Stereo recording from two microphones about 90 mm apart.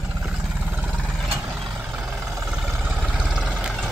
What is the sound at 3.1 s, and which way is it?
Vehicle, 5° right (ahead or behind).